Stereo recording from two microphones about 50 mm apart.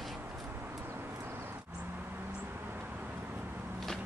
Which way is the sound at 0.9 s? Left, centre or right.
Right.